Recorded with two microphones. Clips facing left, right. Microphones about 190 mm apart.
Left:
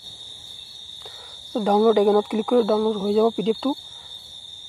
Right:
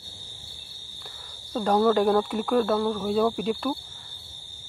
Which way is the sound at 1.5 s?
10° left (ahead or behind).